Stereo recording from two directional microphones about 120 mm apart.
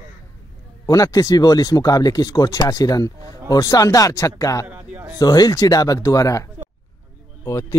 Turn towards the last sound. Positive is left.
turn(degrees=25)  # may be behind; listen again after turning